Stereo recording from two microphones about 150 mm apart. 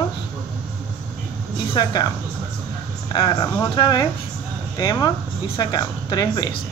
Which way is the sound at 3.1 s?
25° left (ahead or behind).